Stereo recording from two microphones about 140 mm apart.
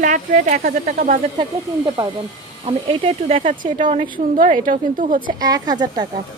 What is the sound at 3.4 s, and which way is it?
A woman's voice, 65° right (ahead or behind).